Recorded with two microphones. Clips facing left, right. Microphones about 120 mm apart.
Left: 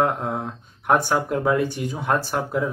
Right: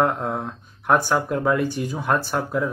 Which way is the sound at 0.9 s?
25° left (ahead or behind).